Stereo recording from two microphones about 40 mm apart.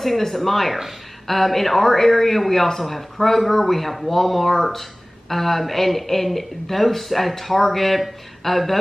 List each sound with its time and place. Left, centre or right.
0.0 s speech: centre